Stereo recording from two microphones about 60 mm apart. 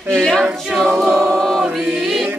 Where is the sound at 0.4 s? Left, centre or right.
Centre.